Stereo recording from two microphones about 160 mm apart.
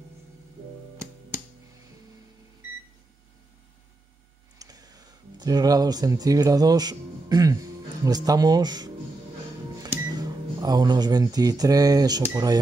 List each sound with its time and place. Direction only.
4.6 s speech: 25° right (ahead or behind)